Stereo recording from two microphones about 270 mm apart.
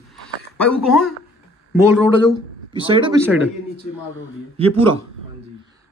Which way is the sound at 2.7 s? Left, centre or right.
Centre.